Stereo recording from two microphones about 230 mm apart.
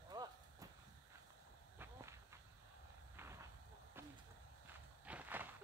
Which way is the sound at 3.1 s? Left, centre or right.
Centre.